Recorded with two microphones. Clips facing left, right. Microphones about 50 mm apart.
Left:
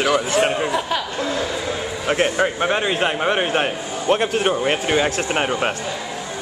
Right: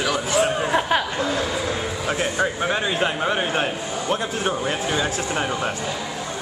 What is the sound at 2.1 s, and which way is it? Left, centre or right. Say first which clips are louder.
A man's voice: left 5 dB; left.